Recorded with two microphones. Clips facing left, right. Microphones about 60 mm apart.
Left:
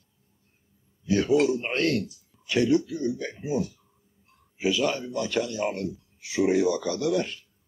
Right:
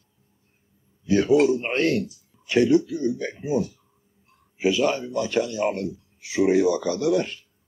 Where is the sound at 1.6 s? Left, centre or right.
Right.